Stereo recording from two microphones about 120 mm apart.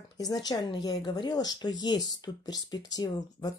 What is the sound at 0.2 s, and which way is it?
Speech, 35° left (ahead or behind).